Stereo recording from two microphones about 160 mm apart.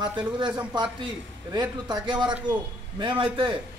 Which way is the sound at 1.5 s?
25° right (ahead or behind).